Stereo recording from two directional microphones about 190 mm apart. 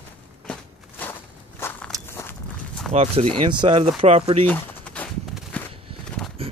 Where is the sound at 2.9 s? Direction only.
35° right (ahead or behind).